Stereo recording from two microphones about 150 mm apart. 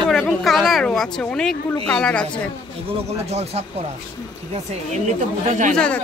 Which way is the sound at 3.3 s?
45° right (ahead or behind).